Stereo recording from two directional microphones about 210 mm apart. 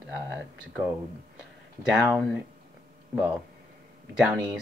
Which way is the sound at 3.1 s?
Centre (ahead or behind).